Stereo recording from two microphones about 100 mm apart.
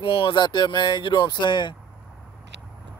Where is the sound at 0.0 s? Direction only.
65° left (ahead or behind).